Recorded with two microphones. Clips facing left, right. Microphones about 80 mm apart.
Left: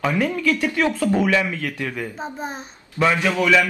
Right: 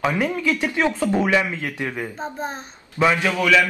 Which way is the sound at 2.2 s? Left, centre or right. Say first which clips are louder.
Right 1 dB; centre.